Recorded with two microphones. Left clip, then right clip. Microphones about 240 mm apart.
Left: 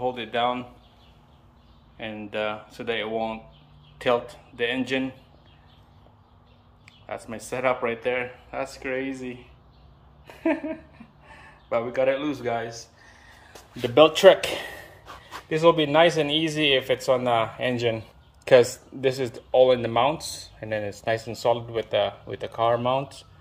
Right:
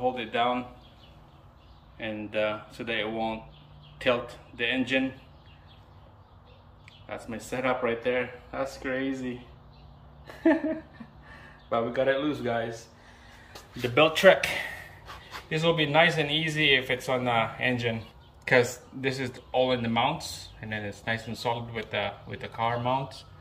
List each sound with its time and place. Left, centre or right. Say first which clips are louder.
0.0 s speech: left 2 dB; centre
2.0 s speech: even; left
6.9 s speech: left 3 dB; centre
10.2 s a sound: right 2 dB; centre
11.7 s a man's voice: left 2 dB; centre
13.5 s speech: left 3 dB; left